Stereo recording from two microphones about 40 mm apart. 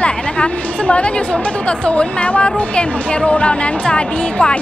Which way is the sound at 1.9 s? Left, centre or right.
Left.